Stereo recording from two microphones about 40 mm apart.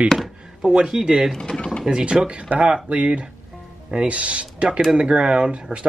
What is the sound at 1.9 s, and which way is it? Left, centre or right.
Speech, right.